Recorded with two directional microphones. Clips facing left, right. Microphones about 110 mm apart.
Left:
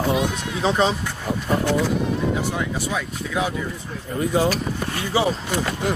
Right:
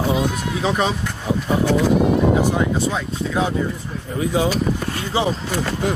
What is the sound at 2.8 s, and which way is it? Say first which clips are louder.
Speech: right 4 dB; 30° right (ahead or behind).